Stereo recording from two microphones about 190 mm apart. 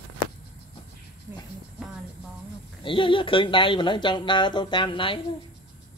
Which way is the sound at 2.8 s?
25° left (ahead or behind).